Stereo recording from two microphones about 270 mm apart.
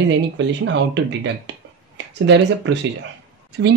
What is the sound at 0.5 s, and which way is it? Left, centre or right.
Speech, right.